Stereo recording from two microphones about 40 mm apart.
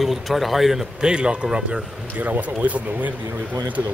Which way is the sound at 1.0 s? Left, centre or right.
Right.